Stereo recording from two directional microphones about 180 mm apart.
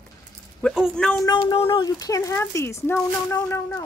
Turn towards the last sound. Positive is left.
turn(degrees=15)  # may be behind; listen again after turning